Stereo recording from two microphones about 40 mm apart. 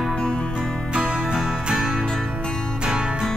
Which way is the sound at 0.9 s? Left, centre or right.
Right.